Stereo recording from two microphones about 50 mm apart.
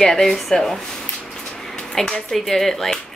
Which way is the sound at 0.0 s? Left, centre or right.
Centre.